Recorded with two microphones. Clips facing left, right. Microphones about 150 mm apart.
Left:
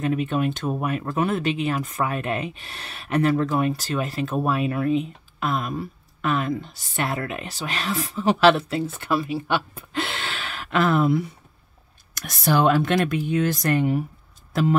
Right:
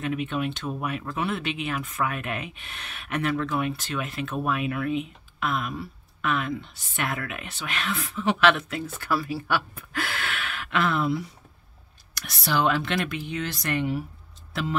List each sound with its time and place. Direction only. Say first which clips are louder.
0.0 s speech: left 5 dB; 40° left (ahead or behind)
14.5 s tick-tock: left 8 dB; 45° left (ahead or behind)